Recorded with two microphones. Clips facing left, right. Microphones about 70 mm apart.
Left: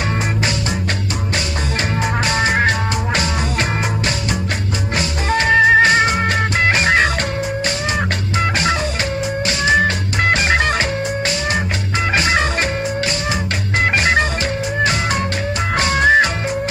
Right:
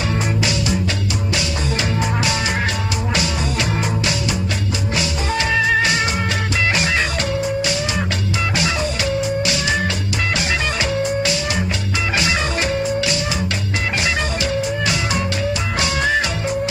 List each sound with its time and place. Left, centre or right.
2.2 s music: left
4.9 s music: left
9.8 s music: left